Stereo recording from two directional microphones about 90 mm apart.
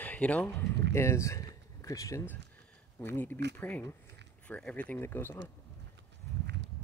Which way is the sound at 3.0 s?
20° left (ahead or behind).